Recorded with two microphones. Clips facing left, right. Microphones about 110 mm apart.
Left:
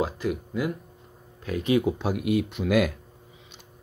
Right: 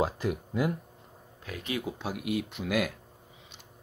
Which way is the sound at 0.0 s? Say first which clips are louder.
Left 2 dB; 35° right (ahead or behind).